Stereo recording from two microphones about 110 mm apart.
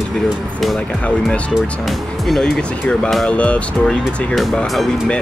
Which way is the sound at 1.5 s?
Centre (ahead or behind).